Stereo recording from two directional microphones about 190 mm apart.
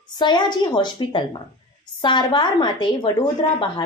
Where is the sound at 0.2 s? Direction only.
25° left (ahead or behind).